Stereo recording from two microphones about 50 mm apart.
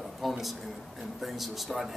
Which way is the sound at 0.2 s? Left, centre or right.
Centre.